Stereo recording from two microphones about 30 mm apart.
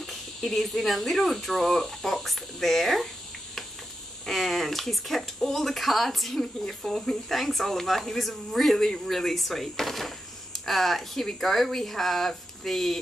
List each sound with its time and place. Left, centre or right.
0.6 s speech: centre
4.3 s speech: centre